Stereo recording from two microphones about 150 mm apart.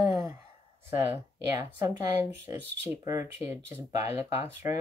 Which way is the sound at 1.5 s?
25° right (ahead or behind).